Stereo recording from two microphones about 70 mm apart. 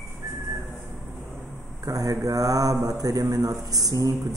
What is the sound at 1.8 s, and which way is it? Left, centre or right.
Speech, right.